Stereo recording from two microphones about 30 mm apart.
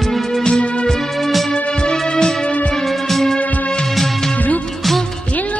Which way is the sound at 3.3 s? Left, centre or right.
Left.